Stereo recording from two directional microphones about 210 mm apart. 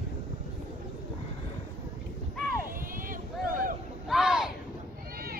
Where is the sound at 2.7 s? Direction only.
40° right (ahead or behind).